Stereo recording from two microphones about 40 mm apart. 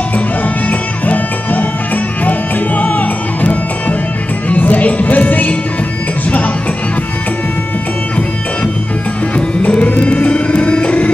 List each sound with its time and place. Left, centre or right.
0.7 s music: left
9.8 s music: left